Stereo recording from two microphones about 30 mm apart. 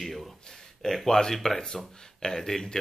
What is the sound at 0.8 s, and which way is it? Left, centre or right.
Speech, centre.